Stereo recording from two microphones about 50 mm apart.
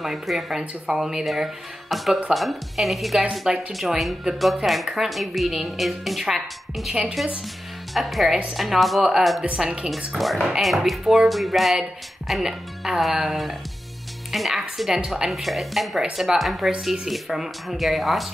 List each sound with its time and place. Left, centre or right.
0.0 s a woman's voice: centre
6.9 s speech: centre
7.9 s a woman's voice: centre